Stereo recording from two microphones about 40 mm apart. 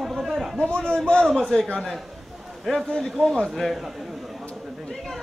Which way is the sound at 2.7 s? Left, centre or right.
Centre.